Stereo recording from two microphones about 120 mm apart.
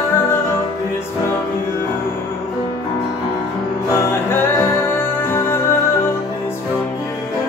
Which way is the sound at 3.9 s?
20° left (ahead or behind).